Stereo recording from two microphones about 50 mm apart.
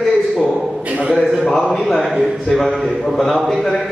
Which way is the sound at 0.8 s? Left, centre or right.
Right.